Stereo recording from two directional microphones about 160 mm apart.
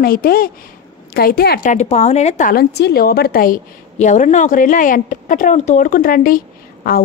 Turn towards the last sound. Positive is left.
turn(degrees=70)  # may be behind; listen again after turning